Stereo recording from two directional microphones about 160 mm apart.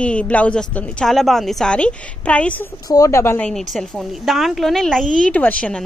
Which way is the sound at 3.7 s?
Centre (ahead or behind).